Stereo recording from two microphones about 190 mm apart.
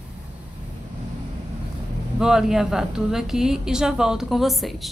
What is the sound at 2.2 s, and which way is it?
A woman's voice, 5° right (ahead or behind).